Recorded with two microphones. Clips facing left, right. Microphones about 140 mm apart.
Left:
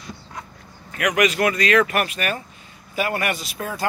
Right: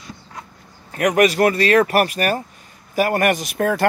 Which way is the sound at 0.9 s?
40° right (ahead or behind).